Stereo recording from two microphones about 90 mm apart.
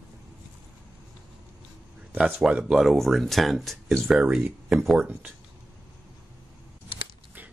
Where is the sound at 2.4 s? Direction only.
5° right (ahead or behind).